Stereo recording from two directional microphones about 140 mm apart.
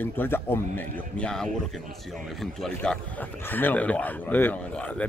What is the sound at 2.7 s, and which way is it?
Speech, 10° left (ahead or behind).